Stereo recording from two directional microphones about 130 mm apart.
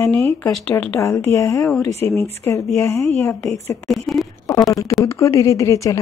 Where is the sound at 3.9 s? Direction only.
Centre (ahead or behind).